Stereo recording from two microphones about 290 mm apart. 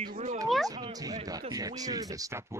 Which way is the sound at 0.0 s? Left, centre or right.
Right.